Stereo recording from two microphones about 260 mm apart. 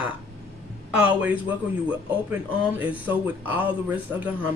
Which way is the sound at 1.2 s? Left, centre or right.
Centre.